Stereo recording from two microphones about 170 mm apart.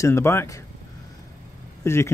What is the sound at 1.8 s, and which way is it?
Speech, 15° left (ahead or behind).